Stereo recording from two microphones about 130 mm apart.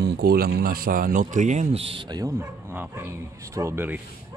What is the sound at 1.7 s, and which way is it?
Speech, 45° right (ahead or behind).